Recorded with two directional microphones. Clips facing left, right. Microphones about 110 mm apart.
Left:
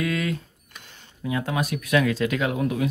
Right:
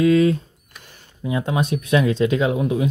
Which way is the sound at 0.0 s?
25° right (ahead or behind).